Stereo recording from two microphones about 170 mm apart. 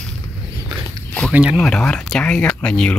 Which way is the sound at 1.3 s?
5° right (ahead or behind).